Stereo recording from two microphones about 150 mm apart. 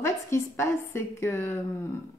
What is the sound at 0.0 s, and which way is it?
A woman's voice, 20° left (ahead or behind).